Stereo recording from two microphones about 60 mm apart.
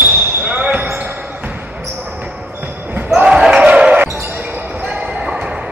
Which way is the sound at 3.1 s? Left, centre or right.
Centre.